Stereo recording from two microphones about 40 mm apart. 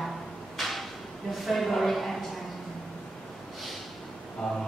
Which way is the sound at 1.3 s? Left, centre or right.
Centre.